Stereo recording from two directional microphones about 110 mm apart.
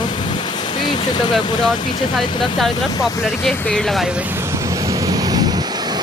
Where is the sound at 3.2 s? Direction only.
Centre (ahead or behind).